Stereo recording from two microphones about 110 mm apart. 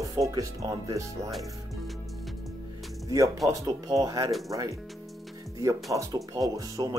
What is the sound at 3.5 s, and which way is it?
Speech, 35° right (ahead or behind).